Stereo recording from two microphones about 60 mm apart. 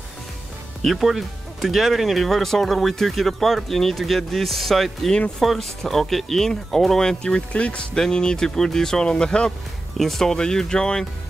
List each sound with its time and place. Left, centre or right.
0.8 s speech: centre
9.9 s speech: centre